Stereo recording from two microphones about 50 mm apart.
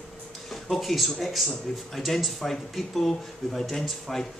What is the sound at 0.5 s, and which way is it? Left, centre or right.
Speech, centre.